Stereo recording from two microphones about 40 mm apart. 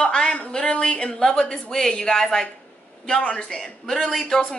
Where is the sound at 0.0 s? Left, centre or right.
Centre.